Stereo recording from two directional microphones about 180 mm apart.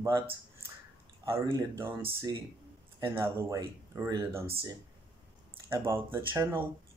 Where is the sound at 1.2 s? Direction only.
15° right (ahead or behind).